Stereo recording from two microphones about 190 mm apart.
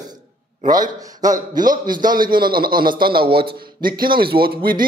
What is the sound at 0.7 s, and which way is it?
Speech, 20° right (ahead or behind).